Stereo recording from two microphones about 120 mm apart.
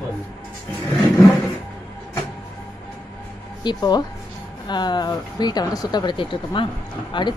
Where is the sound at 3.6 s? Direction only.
35° left (ahead or behind).